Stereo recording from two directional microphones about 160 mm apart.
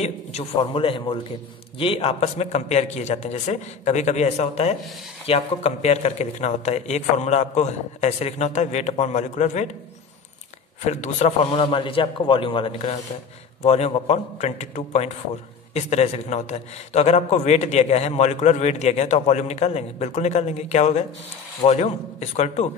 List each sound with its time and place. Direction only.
0.0 s a man's voice: 40° left (ahead or behind)
10.8 s a man's voice: 45° left (ahead or behind)